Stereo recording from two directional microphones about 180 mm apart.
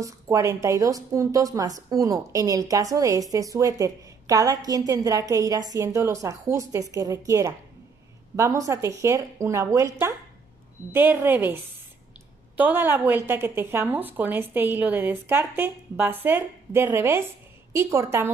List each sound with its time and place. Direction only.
0.0 s a woman's voice: 15° right (ahead or behind)